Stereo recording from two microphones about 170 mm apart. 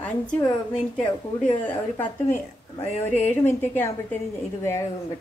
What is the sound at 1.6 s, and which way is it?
Speech, 10° left (ahead or behind).